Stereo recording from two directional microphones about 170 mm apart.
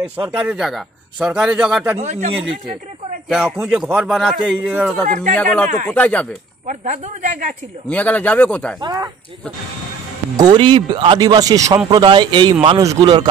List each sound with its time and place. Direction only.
0.3 s a man's voice: 10° right (ahead or behind)
2.0 s speech: 40° right (ahead or behind)
3.3 s a man's voice: 5° right (ahead or behind)
6.7 s a woman's voice: 45° right (ahead or behind)
7.9 s speech: 10° left (ahead or behind)
8.8 s a man's voice: 20° right (ahead or behind)
10.3 s a man's voice: 25° right (ahead or behind)